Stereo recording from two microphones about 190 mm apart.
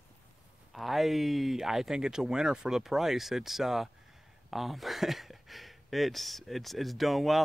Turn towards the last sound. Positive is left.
turn(degrees=0)  # may be behind; listen again after turning